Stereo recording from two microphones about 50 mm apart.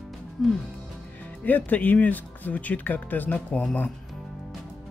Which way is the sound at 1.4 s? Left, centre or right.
Left.